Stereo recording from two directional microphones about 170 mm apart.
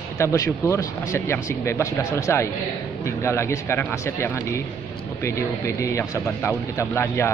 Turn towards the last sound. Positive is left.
turn(degrees=15)  # may be behind; listen again after turning